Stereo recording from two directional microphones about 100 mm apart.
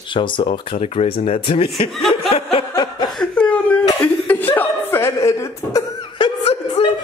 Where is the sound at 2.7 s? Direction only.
45° left (ahead or behind).